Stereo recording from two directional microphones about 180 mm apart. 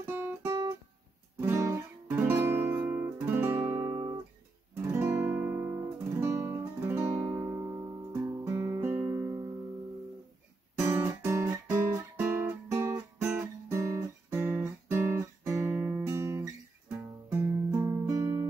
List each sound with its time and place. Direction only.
0.0 s music: 15° right (ahead or behind)
1.4 s guitar: 15° right (ahead or behind)
6.9 s music: 15° right (ahead or behind)
7.3 s guitar: 15° right (ahead or behind)
9.2 s music: 15° right (ahead or behind)
10.9 s guitar: 15° right (ahead or behind)
17.3 s music: 15° right (ahead or behind)